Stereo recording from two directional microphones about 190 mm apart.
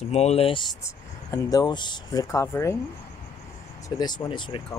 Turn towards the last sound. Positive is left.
turn(degrees=25)  # may be behind; listen again after turning